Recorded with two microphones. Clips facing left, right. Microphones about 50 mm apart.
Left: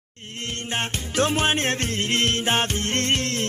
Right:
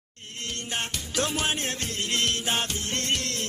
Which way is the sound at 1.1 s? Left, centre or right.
Left.